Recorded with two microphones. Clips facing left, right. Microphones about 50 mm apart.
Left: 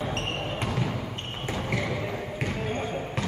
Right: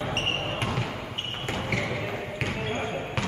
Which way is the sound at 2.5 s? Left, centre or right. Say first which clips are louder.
Even; right.